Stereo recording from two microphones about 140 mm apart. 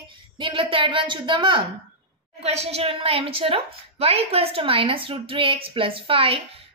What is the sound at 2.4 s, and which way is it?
A woman's voice, 50° right (ahead or behind).